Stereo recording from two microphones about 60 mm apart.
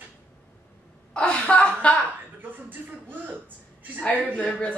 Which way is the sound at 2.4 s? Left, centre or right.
Right.